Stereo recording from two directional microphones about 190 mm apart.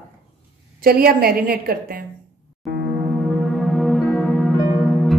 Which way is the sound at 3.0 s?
Centre (ahead or behind).